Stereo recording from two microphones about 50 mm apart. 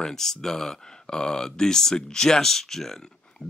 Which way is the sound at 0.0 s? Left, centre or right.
Centre.